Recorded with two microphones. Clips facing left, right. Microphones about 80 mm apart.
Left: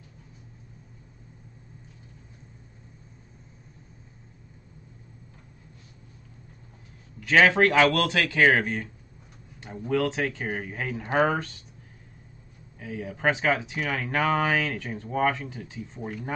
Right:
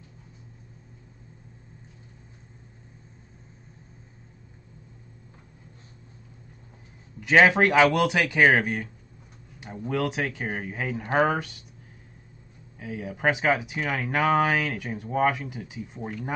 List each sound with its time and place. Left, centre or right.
7.2 s speech: centre
12.7 s speech: centre